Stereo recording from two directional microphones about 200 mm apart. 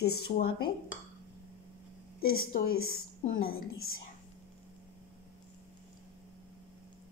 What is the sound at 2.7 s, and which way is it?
Speech, 90° left.